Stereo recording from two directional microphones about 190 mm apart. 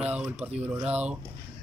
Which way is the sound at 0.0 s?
5° right (ahead or behind).